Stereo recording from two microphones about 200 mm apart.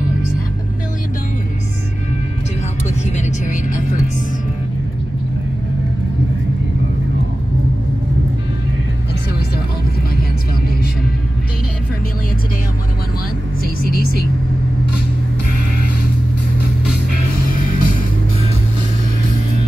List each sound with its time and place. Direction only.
3.1 s vehicle: 35° left (ahead or behind)
17.6 s music: 45° left (ahead or behind)